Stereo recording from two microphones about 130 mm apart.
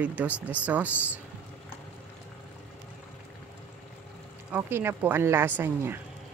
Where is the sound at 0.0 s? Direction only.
10° right (ahead or behind).